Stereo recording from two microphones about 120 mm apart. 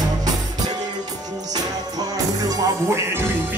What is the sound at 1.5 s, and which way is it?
Music, 30° right (ahead or behind).